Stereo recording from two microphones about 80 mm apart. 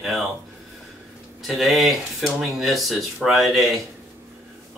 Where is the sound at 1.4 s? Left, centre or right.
Centre.